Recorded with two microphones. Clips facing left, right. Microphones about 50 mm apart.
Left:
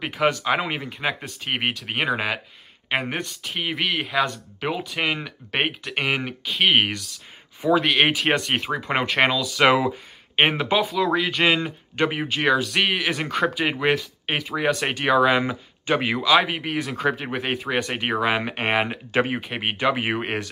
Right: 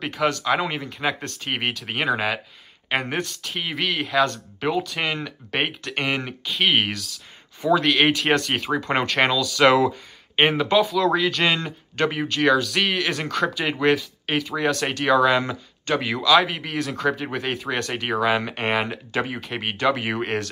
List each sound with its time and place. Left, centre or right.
0.0 s speech: centre
0.9 s speech: centre
7.8 s speech: centre